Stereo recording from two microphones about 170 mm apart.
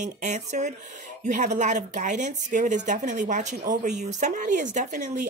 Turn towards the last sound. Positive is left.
turn(degrees=-45)  # may be behind; listen again after turning